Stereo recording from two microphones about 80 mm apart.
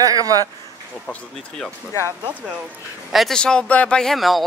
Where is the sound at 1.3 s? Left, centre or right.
Centre.